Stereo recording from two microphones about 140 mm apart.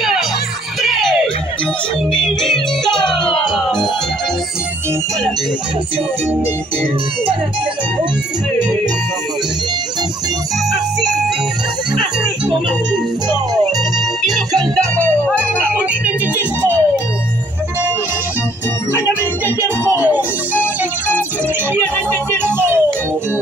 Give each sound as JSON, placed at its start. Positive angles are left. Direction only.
{"t": 0.8, "sound": "music", "side_deg": 0}
{"t": 10.7, "sound": "music", "side_deg": -5}
{"t": 15.0, "sound": "music", "side_deg": 10}
{"t": 16.3, "sound": "music", "side_deg": 15}
{"t": 19.6, "sound": "music", "side_deg": 20}
{"t": 20.1, "sound": "music", "side_deg": -10}
{"t": 22.1, "sound": "music", "side_deg": -15}